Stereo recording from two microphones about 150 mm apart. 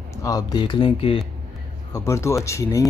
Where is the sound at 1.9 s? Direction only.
20° left (ahead or behind).